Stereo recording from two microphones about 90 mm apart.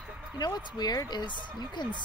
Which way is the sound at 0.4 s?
50° left (ahead or behind).